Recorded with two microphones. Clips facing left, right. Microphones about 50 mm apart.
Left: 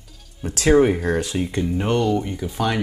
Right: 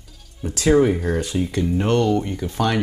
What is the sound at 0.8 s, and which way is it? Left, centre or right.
Speech, left.